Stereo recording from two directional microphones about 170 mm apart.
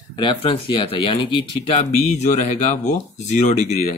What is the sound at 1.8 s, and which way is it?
Speech, 45° left (ahead or behind).